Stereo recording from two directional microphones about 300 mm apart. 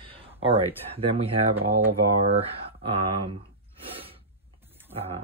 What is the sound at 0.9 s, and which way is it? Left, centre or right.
Speech, centre.